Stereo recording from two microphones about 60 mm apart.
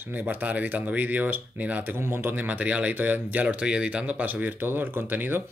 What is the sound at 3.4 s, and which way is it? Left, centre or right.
Speech, centre.